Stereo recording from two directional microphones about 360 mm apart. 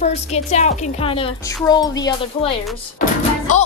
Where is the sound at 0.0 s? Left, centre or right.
Centre.